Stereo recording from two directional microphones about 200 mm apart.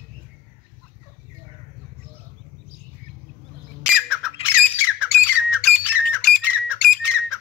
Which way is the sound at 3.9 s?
5° right (ahead or behind).